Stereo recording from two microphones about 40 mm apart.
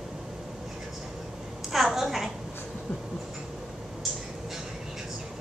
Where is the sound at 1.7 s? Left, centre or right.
Centre.